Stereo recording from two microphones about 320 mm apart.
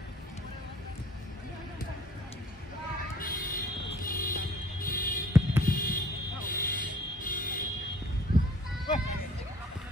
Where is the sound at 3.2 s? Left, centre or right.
Left.